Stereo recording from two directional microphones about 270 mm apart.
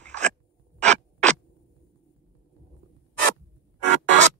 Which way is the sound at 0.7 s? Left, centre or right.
Right.